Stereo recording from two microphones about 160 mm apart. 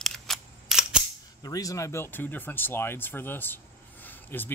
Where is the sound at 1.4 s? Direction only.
20° left (ahead or behind).